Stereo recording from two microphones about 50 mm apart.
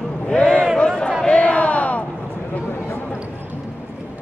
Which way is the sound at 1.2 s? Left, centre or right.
Left.